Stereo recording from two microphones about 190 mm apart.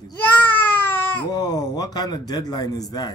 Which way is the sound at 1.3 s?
20° left (ahead or behind).